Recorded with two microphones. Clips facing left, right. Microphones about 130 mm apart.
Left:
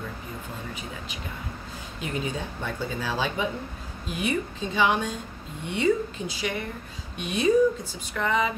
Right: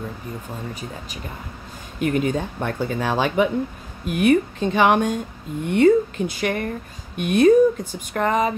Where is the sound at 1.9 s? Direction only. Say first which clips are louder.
Right 10 dB; 60° right (ahead or behind).